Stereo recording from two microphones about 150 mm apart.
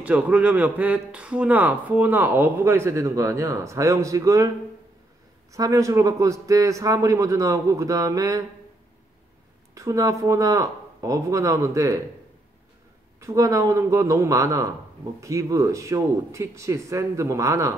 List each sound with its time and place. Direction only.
0.0 s speech: 10° right (ahead or behind)
5.5 s a man's voice: 20° right (ahead or behind)
9.8 s a man's voice: 20° right (ahead or behind)
13.2 s a man's voice: 20° right (ahead or behind)